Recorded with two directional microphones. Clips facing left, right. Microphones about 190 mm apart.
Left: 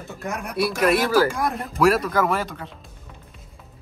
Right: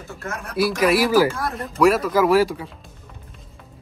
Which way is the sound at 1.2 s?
15° left (ahead or behind).